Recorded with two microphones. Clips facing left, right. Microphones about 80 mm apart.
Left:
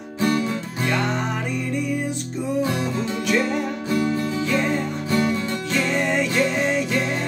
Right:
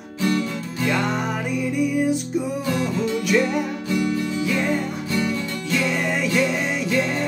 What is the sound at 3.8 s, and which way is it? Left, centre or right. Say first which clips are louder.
Music: left 3 dB; left.